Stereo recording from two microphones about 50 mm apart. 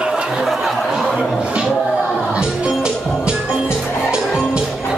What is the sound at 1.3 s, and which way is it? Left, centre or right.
Music, centre.